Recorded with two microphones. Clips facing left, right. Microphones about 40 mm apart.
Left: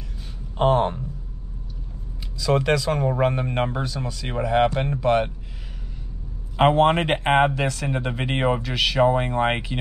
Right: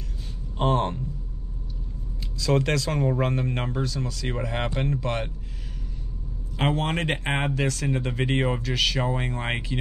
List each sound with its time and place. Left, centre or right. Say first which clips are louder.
0.6 s speech: left 5 dB; centre
2.4 s speech: left 3 dB; centre
6.5 s speech: left 9 dB; left